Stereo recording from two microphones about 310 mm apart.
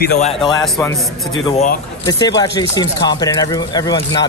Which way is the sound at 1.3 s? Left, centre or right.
Left.